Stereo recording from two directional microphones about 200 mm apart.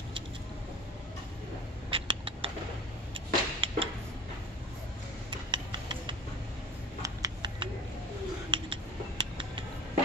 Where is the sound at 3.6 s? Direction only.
25° right (ahead or behind).